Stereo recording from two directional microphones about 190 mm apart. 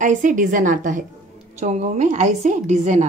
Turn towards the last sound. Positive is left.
turn(degrees=-40)  # may be behind; listen again after turning